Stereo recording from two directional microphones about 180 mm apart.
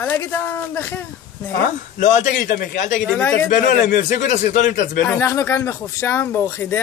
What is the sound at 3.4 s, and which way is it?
Speech, 45° left (ahead or behind).